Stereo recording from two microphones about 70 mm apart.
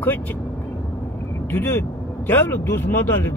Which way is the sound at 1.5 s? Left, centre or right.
Left.